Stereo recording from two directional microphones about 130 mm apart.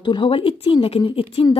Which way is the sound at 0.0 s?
40° left (ahead or behind).